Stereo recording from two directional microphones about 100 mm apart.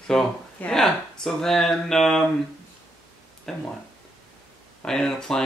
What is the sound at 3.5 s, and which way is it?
Speech, 5° left (ahead or behind).